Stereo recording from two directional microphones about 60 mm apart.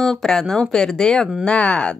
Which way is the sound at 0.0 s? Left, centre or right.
Centre.